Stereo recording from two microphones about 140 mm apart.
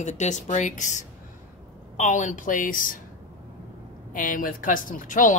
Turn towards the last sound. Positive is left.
turn(degrees=65)  # may be behind; listen again after turning